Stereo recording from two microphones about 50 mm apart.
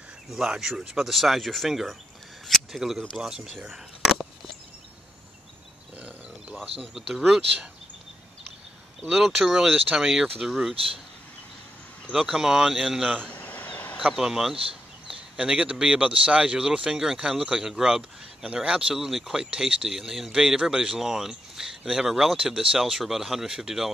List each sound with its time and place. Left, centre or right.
0.3 s speech: centre
2.4 s camera: centre
3.2 s speech: centre
5.9 s a sound: right
6.8 s speech: centre
9.0 s speech: centre
12.1 s speech: centre
13.3 s a sound: left
14.1 s speech: centre
18.4 s speech: right